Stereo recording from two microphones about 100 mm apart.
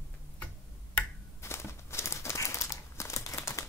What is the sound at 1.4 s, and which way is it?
Crumpling, 25° left (ahead or behind).